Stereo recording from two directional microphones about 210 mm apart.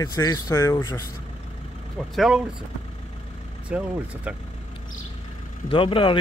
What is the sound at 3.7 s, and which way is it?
Speech, 5° right (ahead or behind).